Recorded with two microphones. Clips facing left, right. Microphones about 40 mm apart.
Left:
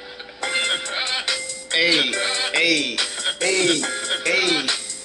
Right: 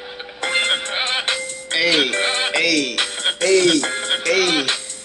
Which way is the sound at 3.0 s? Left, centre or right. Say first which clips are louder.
Right 3 dB; right.